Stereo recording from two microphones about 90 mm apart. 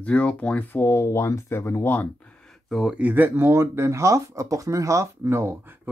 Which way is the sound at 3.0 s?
20° right (ahead or behind).